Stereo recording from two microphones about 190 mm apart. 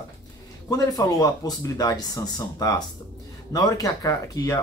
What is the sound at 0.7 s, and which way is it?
Speech, 20° left (ahead or behind).